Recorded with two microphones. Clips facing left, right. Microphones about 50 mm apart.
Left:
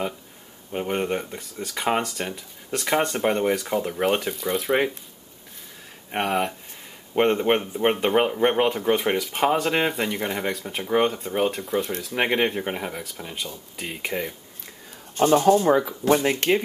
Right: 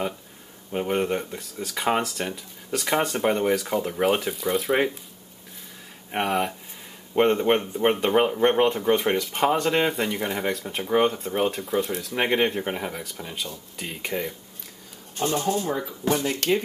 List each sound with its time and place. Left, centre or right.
0.7 s speech: centre
6.1 s speech: centre
15.1 s speech: left
15.6 s speech: left
16.1 s speech: left
16.3 s speech: left